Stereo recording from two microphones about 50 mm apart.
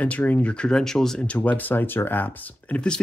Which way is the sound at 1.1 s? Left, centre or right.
Left.